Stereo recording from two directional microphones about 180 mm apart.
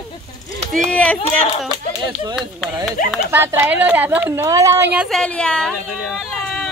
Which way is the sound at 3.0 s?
50° left (ahead or behind).